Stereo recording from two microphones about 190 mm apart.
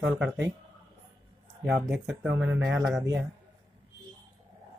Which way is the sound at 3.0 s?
15° right (ahead or behind).